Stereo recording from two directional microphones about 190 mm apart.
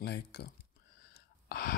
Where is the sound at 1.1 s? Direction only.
50° left (ahead or behind).